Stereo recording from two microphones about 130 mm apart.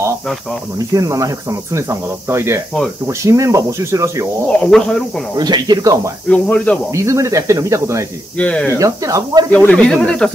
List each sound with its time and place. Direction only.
0.7 s cricket: 25° right (ahead or behind)
4.5 s speech: 5° left (ahead or behind)
5.3 s speech: 30° right (ahead or behind)
6.2 s speech: 10° left (ahead or behind)
6.9 s cricket: 25° right (ahead or behind)
8.4 s speech: 10° left (ahead or behind)
8.7 s cricket: 25° right (ahead or behind)
9.5 s speech: 10° left (ahead or behind)